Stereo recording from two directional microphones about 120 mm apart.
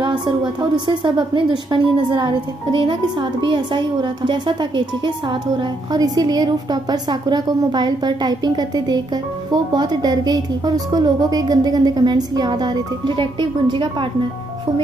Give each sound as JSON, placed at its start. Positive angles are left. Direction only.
{"t": 0.0, "sound": "a woman's voice", "side_deg": -40}